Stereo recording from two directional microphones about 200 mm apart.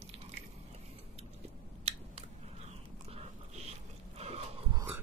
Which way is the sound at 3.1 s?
30° right (ahead or behind).